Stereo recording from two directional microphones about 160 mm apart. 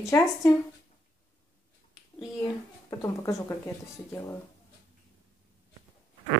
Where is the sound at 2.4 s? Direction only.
20° left (ahead or behind).